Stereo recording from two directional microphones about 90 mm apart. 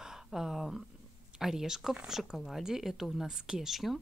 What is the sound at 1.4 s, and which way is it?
Speech, 5° right (ahead or behind).